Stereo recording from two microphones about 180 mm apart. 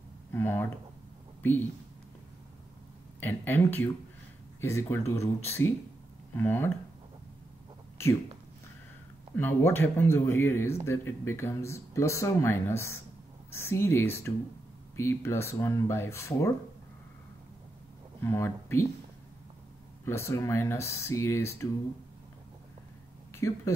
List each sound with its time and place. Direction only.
0.3 s speech: 10° left (ahead or behind)
3.2 s speech: 10° left (ahead or behind)
9.3 s speech: 10° left (ahead or behind)
18.2 s speech: 15° left (ahead or behind)
20.1 s speech: 15° left (ahead or behind)
23.3 s speech: 15° left (ahead or behind)